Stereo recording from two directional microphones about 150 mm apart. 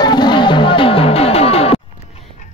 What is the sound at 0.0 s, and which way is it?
Music, 30° left (ahead or behind).